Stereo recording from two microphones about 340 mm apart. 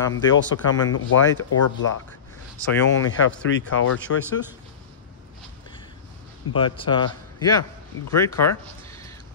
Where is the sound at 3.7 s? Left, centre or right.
Left.